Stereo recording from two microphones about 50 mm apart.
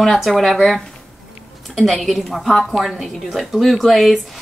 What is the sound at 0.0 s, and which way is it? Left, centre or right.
A woman's voice, centre.